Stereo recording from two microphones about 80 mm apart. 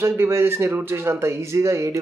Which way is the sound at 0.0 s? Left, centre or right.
Right.